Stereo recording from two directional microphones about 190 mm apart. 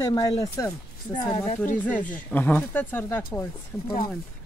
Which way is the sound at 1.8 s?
10° left (ahead or behind).